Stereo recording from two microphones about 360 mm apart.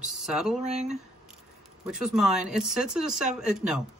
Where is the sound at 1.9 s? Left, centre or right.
Centre.